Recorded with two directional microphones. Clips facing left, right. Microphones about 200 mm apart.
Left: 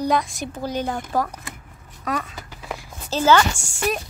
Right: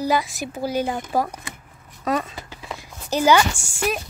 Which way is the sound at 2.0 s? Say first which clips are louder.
Right 4 dB; 25° right (ahead or behind).